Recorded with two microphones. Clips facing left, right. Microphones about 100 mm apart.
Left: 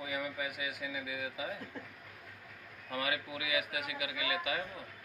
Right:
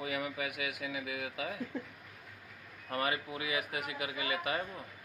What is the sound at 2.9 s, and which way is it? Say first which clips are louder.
A man's voice: right 2 dB; 40° right (ahead or behind).